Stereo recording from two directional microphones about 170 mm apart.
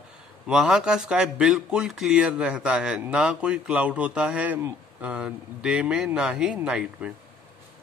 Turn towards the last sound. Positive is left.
turn(degrees=-5)  # may be behind; listen again after turning